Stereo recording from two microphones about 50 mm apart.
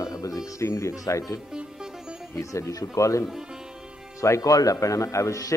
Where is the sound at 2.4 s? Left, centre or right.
Left.